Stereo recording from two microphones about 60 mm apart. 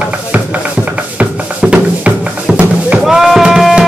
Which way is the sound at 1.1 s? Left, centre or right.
Right.